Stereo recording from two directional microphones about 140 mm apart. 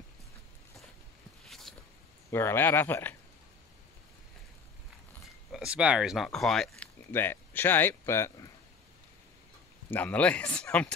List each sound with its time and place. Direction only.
1.4 s a sound: centre (ahead or behind)
2.3 s speech: 15° left (ahead or behind)
5.5 s speech: 5° right (ahead or behind)
7.1 s speech: 15° left (ahead or behind)
9.8 s speech: 10° left (ahead or behind)